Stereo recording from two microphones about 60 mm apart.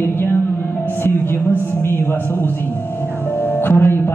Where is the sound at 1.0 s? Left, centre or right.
Left.